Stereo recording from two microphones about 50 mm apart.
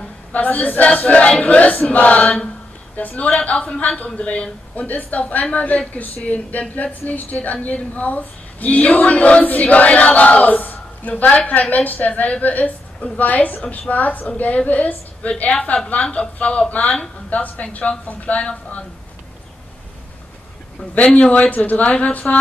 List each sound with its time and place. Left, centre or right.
0.3 s a woman's voice: left
20.9 s a woman's voice: left